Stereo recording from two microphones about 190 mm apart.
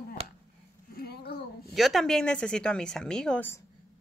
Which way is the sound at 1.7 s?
Centre (ahead or behind).